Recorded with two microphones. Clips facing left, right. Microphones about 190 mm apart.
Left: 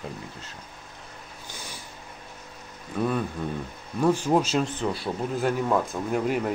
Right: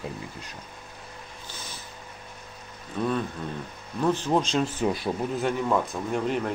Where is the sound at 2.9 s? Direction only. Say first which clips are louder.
Left 1 dB; 5° left (ahead or behind).